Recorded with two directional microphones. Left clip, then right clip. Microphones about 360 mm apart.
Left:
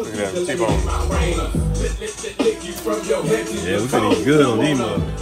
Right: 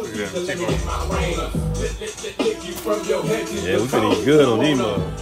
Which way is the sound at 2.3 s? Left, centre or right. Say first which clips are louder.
Left 3 dB; centre.